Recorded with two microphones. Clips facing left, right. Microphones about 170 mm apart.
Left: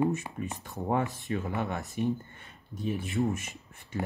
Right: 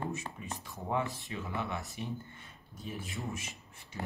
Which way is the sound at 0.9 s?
50° left (ahead or behind).